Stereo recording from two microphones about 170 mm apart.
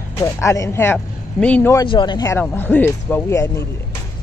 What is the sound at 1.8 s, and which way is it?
Speech, 25° left (ahead or behind).